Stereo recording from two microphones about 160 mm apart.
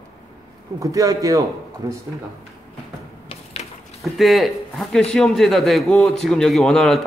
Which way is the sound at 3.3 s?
40° left (ahead or behind).